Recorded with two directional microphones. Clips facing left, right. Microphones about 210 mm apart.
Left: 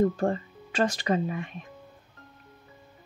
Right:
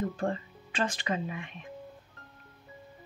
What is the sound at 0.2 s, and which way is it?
Speech, 40° left (ahead or behind).